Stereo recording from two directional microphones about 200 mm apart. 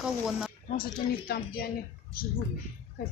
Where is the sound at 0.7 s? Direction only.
50° left (ahead or behind).